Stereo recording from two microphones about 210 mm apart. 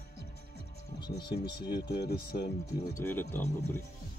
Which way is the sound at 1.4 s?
20° left (ahead or behind).